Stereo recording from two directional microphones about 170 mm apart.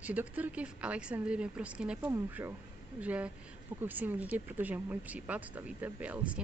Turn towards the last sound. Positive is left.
turn(degrees=-10)  # may be behind; listen again after turning